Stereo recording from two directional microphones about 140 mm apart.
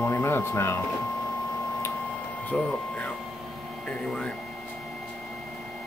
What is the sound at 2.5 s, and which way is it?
Speech, 10° left (ahead or behind).